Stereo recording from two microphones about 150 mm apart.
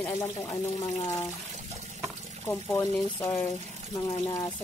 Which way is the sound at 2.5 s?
15° left (ahead or behind).